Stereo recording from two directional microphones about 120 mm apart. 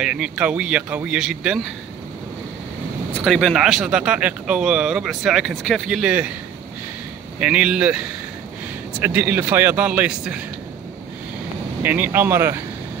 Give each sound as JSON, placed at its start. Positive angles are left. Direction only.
{"t": 0.0, "sound": "speech", "side_deg": -10}
{"t": 3.3, "sound": "speech", "side_deg": 0}
{"t": 7.3, "sound": "speech", "side_deg": -10}
{"t": 9.0, "sound": "speech", "side_deg": -15}
{"t": 11.8, "sound": "speech", "side_deg": -15}